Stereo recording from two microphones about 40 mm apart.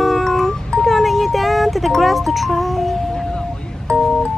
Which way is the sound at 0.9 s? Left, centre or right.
Centre.